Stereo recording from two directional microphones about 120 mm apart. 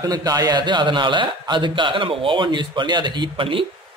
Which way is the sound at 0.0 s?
30° right (ahead or behind).